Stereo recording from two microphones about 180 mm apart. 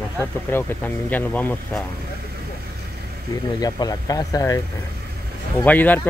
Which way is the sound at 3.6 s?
20° left (ahead or behind).